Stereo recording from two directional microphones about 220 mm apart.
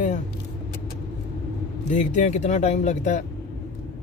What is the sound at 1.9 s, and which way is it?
Speech, 35° left (ahead or behind).